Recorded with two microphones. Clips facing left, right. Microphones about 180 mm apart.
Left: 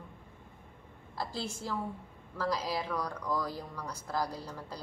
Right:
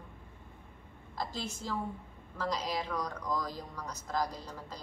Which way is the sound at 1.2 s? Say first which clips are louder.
Left 1 dB; 10° left (ahead or behind).